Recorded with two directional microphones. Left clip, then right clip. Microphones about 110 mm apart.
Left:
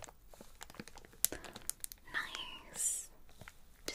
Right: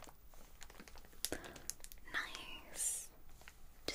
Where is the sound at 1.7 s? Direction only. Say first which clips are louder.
Left 2 dB; 80° left.